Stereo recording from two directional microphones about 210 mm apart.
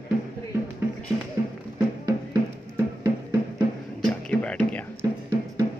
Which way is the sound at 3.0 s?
20° right (ahead or behind).